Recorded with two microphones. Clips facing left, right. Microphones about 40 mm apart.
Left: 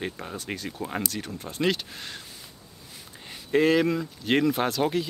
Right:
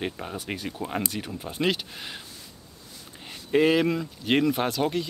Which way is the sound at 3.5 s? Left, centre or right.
Centre.